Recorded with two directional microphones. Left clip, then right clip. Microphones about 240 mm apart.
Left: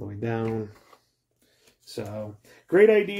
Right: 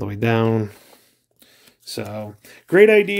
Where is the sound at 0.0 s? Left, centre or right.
Right.